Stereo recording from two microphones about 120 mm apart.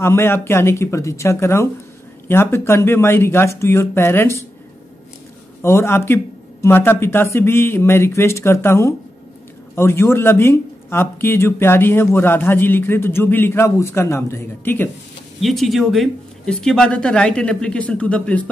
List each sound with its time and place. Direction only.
0.0 s a man's voice: 20° left (ahead or behind)
5.6 s a man's voice: 20° left (ahead or behind)
15.4 s speech: centre (ahead or behind)